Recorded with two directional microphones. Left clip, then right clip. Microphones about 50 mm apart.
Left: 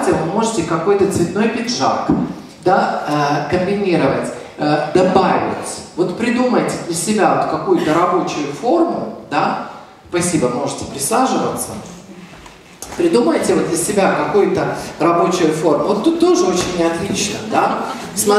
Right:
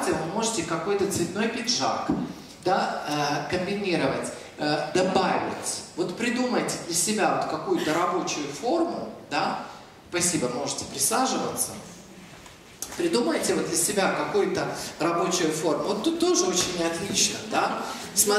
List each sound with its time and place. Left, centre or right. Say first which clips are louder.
0.0 s a man's voice: left 10 dB; centre
12.9 s speech: left 11 dB; centre